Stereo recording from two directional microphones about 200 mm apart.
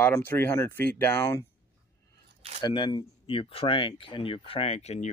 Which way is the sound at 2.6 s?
20° left (ahead or behind).